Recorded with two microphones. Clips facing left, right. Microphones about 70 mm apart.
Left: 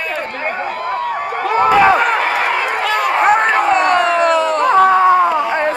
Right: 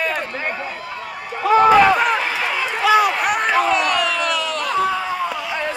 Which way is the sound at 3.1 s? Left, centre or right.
Left.